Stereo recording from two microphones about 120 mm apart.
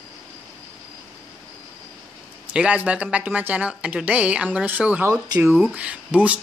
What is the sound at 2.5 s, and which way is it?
A woman's voice, 10° right (ahead or behind).